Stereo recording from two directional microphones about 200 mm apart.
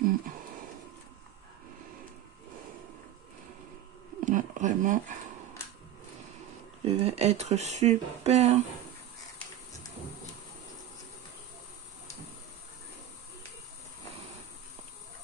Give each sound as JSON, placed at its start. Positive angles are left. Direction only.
{"t": 4.2, "sound": "speech", "side_deg": -40}
{"t": 6.8, "sound": "speech", "side_deg": -30}